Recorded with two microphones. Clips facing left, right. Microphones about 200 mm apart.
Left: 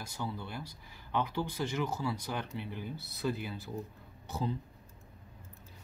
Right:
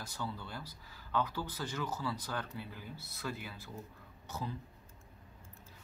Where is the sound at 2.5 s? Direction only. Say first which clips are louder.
Left 5 dB; 20° left (ahead or behind).